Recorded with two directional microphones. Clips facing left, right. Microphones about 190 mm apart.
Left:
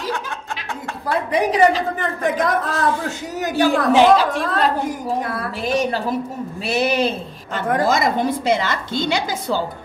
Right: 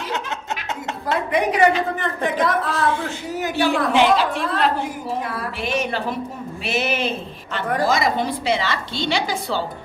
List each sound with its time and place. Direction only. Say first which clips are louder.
1.3 s a woman's voice: left 2 dB; 35° left (ahead or behind)